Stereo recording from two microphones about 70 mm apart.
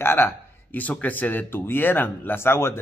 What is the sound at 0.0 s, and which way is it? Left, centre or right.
Speech, left.